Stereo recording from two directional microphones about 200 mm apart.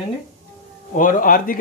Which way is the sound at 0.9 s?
40° left (ahead or behind).